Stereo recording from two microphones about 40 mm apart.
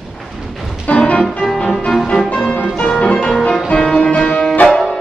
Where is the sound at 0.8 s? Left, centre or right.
Left.